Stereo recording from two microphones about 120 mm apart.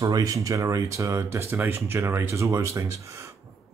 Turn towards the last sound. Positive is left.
turn(degrees=-25)  # may be behind; listen again after turning